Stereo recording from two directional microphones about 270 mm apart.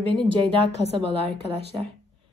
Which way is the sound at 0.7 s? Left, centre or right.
Left.